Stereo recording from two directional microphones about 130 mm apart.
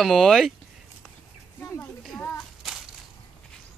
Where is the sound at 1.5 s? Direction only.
10° left (ahead or behind).